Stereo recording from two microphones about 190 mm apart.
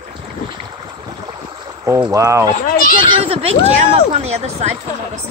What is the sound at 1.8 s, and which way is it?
Speech, 15° right (ahead or behind).